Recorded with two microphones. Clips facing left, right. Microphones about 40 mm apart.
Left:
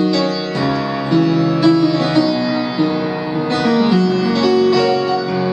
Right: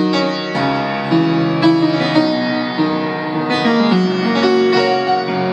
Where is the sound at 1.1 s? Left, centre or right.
Right.